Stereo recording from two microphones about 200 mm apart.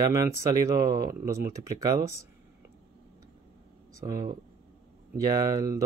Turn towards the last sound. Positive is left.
turn(degrees=-15)  # may be behind; listen again after turning